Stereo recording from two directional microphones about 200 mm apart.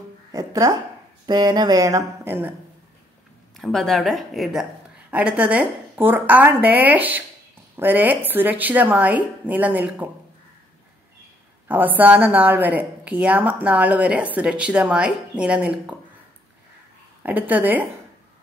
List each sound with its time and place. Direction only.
0.3 s a woman's voice: 15° right (ahead or behind)
3.5 s a woman's voice: centre (ahead or behind)
11.6 s a woman's voice: 10° right (ahead or behind)
17.2 s a woman's voice: 10° right (ahead or behind)